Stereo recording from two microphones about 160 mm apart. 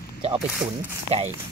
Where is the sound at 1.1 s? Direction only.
40° right (ahead or behind).